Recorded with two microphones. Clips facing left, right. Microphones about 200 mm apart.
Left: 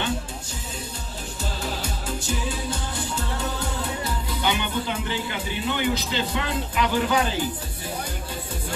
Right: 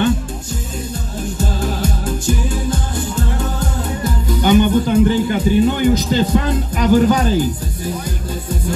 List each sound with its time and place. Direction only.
1.4 s music: 50° right (ahead or behind)
4.0 s music: 45° right (ahead or behind)